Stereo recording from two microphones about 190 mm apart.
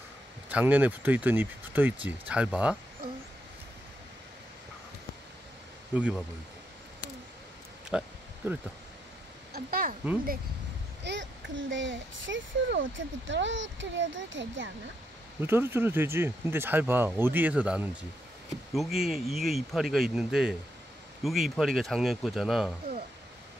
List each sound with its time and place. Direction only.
0.5 s speech: 10° right (ahead or behind)
5.9 s speech: 5° right (ahead or behind)
7.9 s speech: 5° right (ahead or behind)
9.5 s speech: 50° right (ahead or behind)
11.1 s a child's voice: 75° right (ahead or behind)
15.4 s speech: 10° right (ahead or behind)